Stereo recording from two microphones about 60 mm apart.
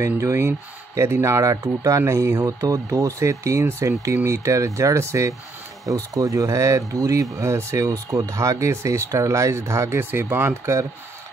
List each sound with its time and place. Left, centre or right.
0.2 s speech: right
5.9 s speech: right
7.0 s speech: right